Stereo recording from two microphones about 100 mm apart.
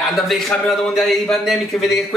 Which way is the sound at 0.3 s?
Centre (ahead or behind).